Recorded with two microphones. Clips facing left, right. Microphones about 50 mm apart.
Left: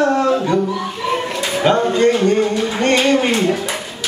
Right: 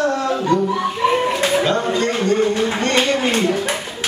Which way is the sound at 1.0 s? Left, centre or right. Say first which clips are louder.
Right 4 dB; centre.